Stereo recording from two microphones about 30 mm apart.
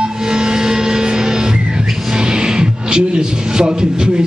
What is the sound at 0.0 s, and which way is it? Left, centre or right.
Music, right.